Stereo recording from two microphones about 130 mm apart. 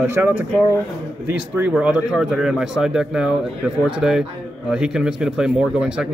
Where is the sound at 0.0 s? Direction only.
15° right (ahead or behind).